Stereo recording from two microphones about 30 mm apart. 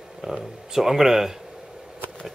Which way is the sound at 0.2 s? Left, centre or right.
Right.